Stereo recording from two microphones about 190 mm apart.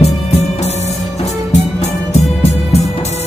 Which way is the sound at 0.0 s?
35° left (ahead or behind).